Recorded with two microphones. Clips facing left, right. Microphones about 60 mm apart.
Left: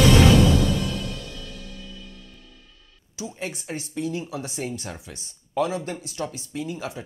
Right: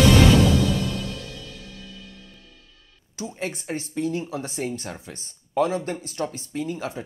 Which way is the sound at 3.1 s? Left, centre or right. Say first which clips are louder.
Right 2 dB; right.